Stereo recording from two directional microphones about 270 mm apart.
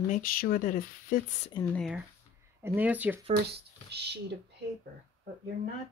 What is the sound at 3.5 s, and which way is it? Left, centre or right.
Speech, right.